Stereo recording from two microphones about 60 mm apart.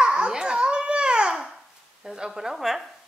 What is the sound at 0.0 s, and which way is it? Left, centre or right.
Babbling, centre.